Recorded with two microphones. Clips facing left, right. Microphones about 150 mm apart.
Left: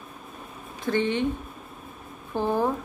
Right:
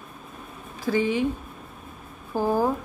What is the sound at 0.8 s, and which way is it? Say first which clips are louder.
Speech: right 1 dB; 5° right (ahead or behind).